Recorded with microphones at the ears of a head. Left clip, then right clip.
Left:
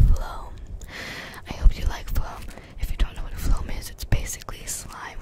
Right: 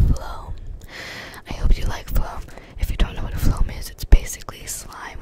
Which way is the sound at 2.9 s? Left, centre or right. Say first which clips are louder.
Right 8 dB; right.